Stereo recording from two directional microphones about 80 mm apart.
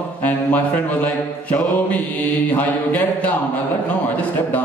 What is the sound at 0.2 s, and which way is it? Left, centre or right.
Mantra, centre.